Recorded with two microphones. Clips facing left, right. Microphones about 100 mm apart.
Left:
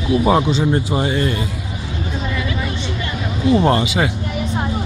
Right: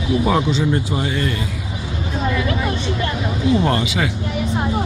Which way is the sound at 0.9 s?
25° left (ahead or behind).